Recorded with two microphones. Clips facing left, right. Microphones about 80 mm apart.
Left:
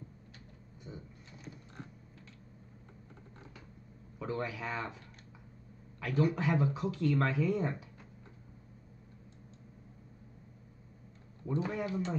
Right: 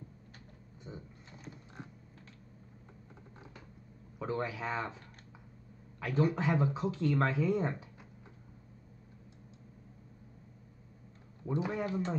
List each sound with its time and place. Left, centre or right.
0.9 s a sound: right
1.8 s typing: centre
4.2 s speech: right
11.5 s speech: centre
11.8 s speech: right